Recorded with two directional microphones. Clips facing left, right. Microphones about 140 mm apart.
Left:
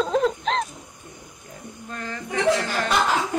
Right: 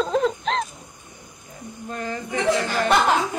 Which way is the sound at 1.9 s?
15° right (ahead or behind).